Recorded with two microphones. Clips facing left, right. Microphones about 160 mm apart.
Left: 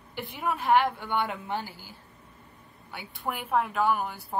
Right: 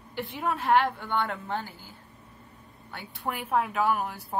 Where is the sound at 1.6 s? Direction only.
90° left.